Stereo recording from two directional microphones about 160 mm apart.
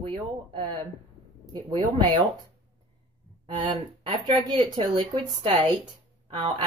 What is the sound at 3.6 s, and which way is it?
Speech, 30° right (ahead or behind).